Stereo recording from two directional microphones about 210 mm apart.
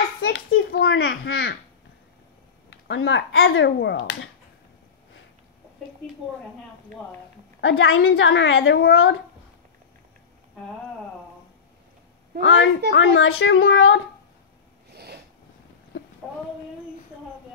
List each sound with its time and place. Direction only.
0.2 s a sound: 70° left (ahead or behind)
0.7 s speech: 50° left (ahead or behind)
2.7 s speech: 60° left (ahead or behind)
7.6 s a woman's voice: 65° left (ahead or behind)
12.4 s speech: 60° left (ahead or behind)
14.9 s a sound: 50° right (ahead or behind)